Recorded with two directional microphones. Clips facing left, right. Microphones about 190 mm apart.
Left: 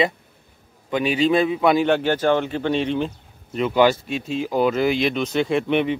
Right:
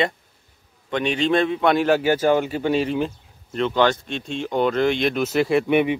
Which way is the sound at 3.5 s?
5° left (ahead or behind).